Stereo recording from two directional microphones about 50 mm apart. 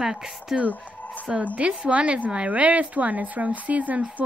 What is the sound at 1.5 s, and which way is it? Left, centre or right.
A woman's voice, right.